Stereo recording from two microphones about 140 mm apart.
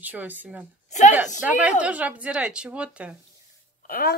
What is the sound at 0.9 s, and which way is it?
Speech, 60° left (ahead or behind).